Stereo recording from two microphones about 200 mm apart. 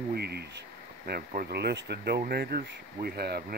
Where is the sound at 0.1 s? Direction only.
55° right (ahead or behind).